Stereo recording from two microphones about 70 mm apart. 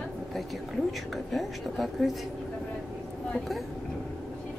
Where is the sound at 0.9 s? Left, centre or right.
Centre.